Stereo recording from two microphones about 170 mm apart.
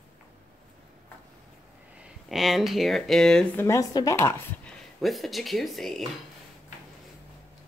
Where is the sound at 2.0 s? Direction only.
Centre (ahead or behind).